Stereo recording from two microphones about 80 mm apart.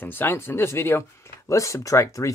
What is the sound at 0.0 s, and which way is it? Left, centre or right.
Speech, left.